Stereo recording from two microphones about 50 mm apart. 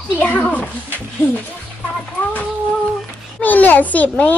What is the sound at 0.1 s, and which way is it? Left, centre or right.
Speech, left.